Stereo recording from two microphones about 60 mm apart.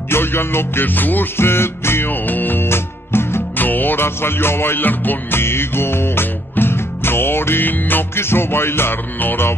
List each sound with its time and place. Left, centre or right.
0.1 s music: left